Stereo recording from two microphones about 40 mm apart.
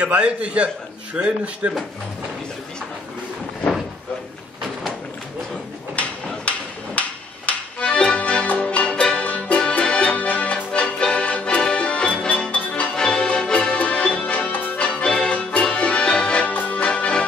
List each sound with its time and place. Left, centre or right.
0.2 s speech: right
6.5 s a sound: left
7.0 s accordion: left
9.2 s music: left
9.7 s accordion: left
12.4 s music: left
12.9 s music: centre
13.7 s music: left
15.0 s music: centre
16.6 s accordion: left